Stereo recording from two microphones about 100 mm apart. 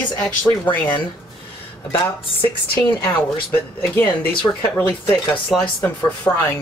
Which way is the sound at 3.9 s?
10° left (ahead or behind).